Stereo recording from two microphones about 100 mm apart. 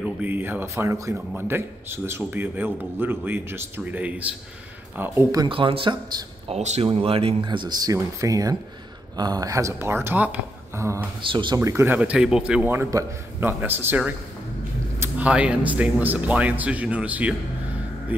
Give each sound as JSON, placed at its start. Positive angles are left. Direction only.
{"t": 0.0, "sound": "a man's voice", "side_deg": -15}
{"t": 5.5, "sound": "speech", "side_deg": -60}
{"t": 6.5, "sound": "speech", "side_deg": -70}
{"t": 7.4, "sound": "a man's voice", "side_deg": -45}
{"t": 12.0, "sound": "speech", "side_deg": -10}
{"t": 12.7, "sound": "a man's voice", "side_deg": -25}
{"t": 15.1, "sound": "speech", "side_deg": -10}